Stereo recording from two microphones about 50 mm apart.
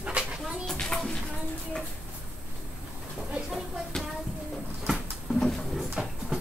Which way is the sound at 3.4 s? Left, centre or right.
Centre.